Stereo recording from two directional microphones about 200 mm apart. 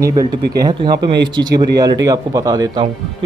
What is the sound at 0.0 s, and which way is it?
Speech, 20° right (ahead or behind).